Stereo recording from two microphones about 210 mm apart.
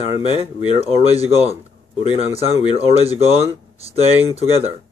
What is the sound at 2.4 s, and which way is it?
Speech, 30° left (ahead or behind).